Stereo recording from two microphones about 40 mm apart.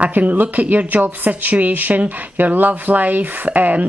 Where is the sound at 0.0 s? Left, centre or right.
Right.